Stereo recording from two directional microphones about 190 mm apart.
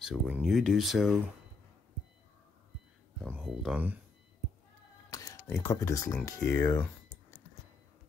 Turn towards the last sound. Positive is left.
turn(degrees=15)  # may be behind; listen again after turning